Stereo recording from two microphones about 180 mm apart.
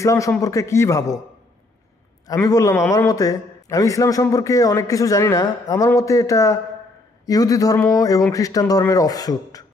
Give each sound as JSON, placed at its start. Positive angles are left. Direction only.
{"t": 0.0, "sound": "a man's voice", "side_deg": 15}
{"t": 2.4, "sound": "a man's voice", "side_deg": 20}